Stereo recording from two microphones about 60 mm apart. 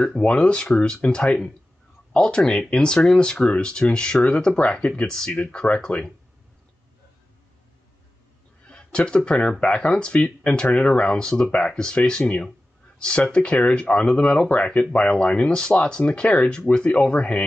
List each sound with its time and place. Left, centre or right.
0.0 s speech: centre
8.6 s speech: centre